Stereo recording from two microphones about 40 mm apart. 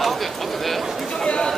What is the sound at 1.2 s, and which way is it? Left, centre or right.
Chatter, left.